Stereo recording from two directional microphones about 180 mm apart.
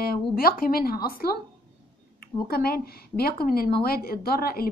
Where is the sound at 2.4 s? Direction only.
55° left (ahead or behind).